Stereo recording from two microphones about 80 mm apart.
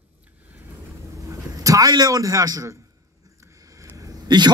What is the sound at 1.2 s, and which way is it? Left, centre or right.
A man's voice, right.